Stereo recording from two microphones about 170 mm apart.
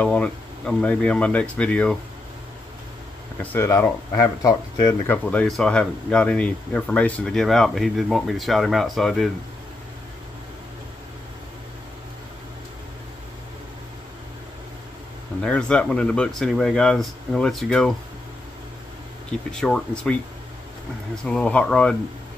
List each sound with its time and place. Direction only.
0.0 s speech: 5° left (ahead or behind)
3.3 s speech: 15° left (ahead or behind)
5.0 s speech: 10° left (ahead or behind)
15.4 s speech: 5° left (ahead or behind)
19.5 s speech: 5° left (ahead or behind)
21.2 s speech: 5° left (ahead or behind)